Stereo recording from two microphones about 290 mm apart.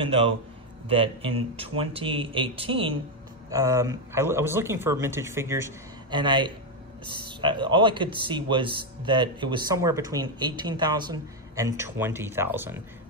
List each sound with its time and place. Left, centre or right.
0.0 s speech: centre